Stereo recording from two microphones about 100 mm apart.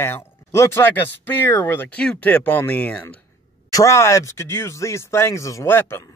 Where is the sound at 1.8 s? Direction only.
10° left (ahead or behind).